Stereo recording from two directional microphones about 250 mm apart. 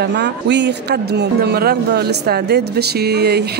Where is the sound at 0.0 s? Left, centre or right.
Right.